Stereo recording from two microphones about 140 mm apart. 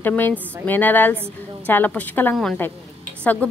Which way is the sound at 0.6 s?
15° left (ahead or behind).